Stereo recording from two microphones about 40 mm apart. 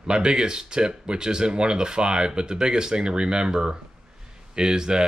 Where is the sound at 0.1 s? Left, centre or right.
Right.